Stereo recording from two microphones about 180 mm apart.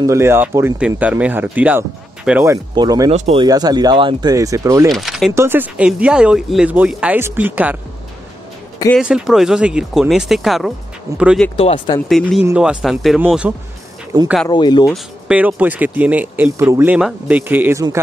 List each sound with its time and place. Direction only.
0.0 s speech: 15° right (ahead or behind)
4.8 s speech: centre (ahead or behind)
5.3 s speech: 15° right (ahead or behind)
8.9 s speech: 5° right (ahead or behind)
11.1 s speech: 15° right (ahead or behind)
11.5 s speech: 30° left (ahead or behind)
12.1 s speech: centre (ahead or behind)
14.5 s speech: 25° left (ahead or behind)
14.9 s speech: 5° right (ahead or behind)